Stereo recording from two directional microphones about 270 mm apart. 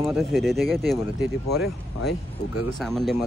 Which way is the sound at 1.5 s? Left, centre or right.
Left.